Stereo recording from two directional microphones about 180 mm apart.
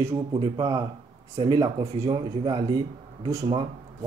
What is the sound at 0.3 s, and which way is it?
Speech, 25° right (ahead or behind).